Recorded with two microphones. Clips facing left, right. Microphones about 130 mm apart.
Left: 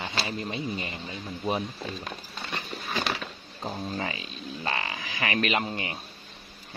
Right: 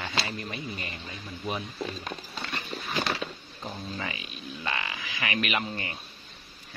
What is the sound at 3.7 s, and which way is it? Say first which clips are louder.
Speech: left 4 dB; 30° left (ahead or behind).